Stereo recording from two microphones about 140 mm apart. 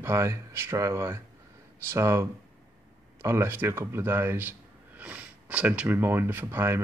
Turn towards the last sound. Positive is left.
turn(degrees=-20)  # may be behind; listen again after turning